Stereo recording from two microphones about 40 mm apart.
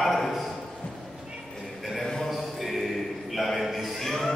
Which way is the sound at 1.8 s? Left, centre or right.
Centre.